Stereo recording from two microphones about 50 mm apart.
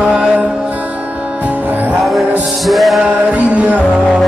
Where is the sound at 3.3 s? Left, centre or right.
Right.